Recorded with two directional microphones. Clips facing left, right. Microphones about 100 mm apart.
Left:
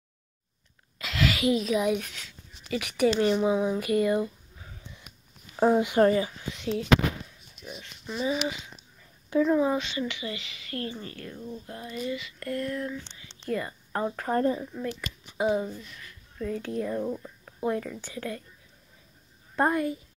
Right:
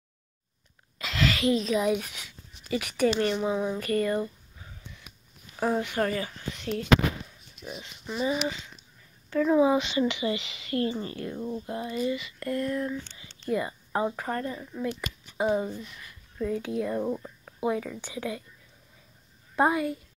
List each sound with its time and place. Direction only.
0.9 s a sound: centre (ahead or behind)
3.2 s speech: 10° left (ahead or behind)
5.6 s speech: 15° left (ahead or behind)
6.2 s speech: 5° left (ahead or behind)
9.6 s speech: 15° right (ahead or behind)
12.0 s a woman's voice: 5° right (ahead or behind)
19.5 s speech: 5° right (ahead or behind)